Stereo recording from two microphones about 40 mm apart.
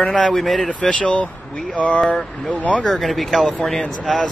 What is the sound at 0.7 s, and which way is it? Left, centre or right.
Speech, left.